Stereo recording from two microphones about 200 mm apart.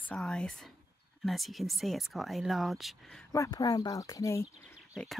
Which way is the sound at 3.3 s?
20° left (ahead or behind).